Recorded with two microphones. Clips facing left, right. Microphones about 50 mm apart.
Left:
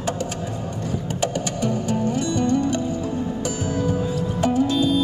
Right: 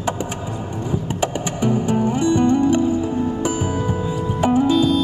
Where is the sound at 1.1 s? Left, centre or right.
Centre.